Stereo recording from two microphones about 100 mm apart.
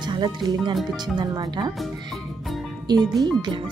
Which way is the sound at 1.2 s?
45° right (ahead or behind).